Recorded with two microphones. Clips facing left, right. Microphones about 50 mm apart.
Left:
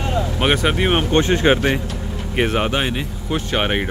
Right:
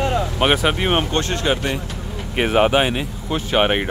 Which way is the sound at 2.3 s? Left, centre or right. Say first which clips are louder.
Right 3 dB; centre.